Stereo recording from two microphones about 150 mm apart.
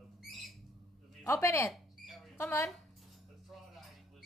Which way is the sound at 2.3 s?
15° left (ahead or behind).